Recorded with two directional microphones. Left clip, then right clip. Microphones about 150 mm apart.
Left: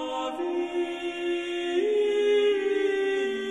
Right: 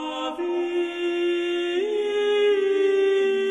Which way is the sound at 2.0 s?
30° right (ahead or behind).